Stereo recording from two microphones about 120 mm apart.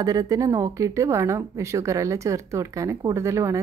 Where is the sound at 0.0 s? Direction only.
30° right (ahead or behind).